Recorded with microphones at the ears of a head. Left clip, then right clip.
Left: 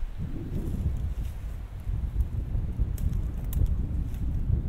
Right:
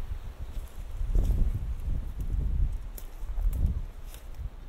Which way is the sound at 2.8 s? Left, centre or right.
Left.